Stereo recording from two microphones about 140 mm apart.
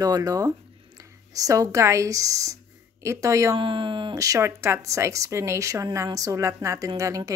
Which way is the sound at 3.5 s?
35° right (ahead or behind).